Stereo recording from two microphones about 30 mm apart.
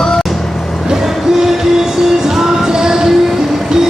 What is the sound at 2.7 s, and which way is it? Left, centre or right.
Train, right.